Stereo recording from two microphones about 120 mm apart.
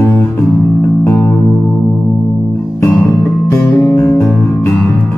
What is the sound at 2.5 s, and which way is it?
Music, 10° left (ahead or behind).